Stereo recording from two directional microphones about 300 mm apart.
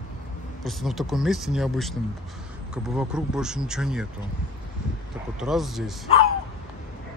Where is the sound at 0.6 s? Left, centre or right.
Centre.